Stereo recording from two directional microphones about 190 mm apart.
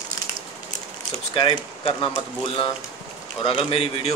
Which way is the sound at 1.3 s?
25° left (ahead or behind).